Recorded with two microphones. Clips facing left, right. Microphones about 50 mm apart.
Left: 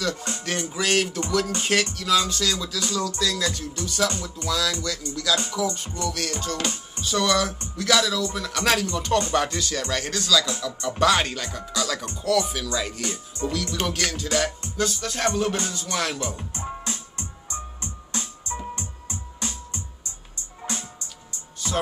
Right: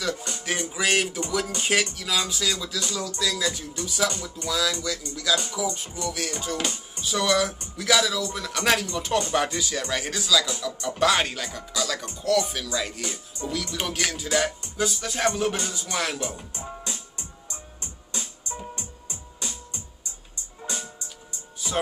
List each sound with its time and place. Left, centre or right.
0.5 s speech: centre
2.0 s music: centre
4.8 s speech: centre
7.0 s music: centre
9.3 s speech: centre
10.6 s music: centre
13.5 s speech: centre
16.8 s music: left